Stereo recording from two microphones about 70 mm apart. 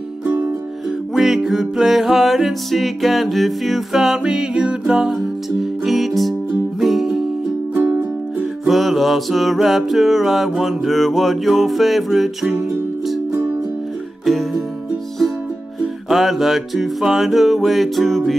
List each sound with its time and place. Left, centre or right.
1.1 s music: centre
7.7 s music: right
8.4 s music: centre
14.2 s music: centre
15.8 s music: centre